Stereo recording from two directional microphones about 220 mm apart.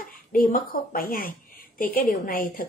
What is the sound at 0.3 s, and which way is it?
A woman's voice, 40° left (ahead or behind).